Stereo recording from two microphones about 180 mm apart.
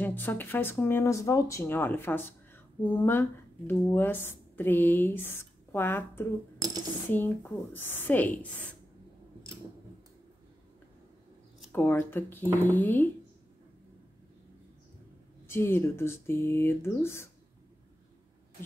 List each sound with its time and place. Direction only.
0.0 s speech: 10° left (ahead or behind)
6.6 s a sound: 20° right (ahead or behind)
7.1 s speech: 10° left (ahead or behind)
11.7 s speech: 10° left (ahead or behind)
15.4 s speech: 15° left (ahead or behind)